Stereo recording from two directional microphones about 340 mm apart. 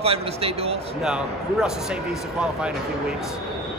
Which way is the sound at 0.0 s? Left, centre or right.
Centre.